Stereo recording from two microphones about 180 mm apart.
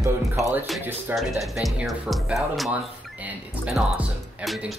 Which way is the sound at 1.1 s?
Centre (ahead or behind).